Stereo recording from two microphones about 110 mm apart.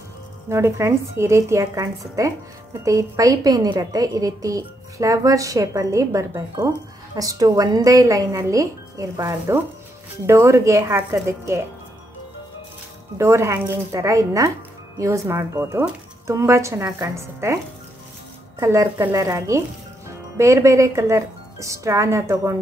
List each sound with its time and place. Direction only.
0.5 s a woman's voice: 25° right (ahead or behind)
13.2 s a woman's voice: 25° right (ahead or behind)
18.6 s a woman's voice: 25° right (ahead or behind)